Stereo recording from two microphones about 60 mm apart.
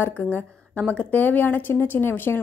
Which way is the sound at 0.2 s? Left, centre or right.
Left.